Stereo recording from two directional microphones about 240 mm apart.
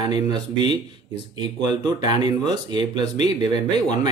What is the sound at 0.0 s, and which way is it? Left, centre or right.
Speech, centre.